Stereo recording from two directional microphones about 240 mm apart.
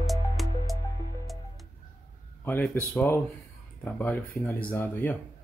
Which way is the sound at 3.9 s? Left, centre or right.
Centre.